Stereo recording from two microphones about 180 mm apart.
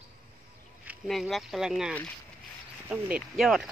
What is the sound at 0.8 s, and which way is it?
Speech, centre (ahead or behind).